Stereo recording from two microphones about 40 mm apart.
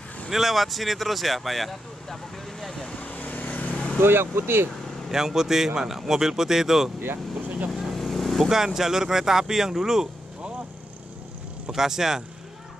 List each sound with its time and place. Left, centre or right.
0.3 s speech: centre
2.7 s speech: centre
3.0 s vehicle: left
3.7 s vehicle: left
4.0 s speech: right
5.1 s speech: centre
7.4 s vehicle: right
7.7 s vehicle: centre
8.5 s speech: centre
11.7 s speech: centre